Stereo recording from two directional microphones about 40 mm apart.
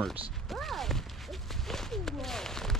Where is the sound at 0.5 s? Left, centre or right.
Centre.